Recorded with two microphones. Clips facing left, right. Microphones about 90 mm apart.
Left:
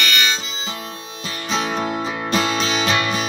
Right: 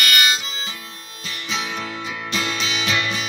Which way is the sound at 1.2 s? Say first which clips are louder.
Left 5 dB; 40° left (ahead or behind).